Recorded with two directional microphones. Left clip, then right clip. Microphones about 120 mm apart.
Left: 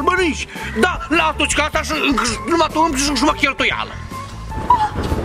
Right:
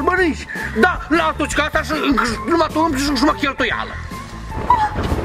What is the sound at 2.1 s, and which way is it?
Speech, 20° left (ahead or behind).